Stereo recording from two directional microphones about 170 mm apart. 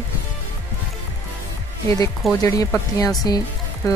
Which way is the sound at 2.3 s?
20° left (ahead or behind).